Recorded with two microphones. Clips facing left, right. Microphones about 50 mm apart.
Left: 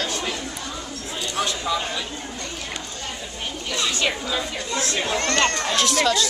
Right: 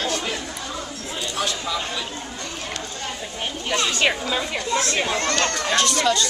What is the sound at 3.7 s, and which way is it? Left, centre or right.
Speech, right.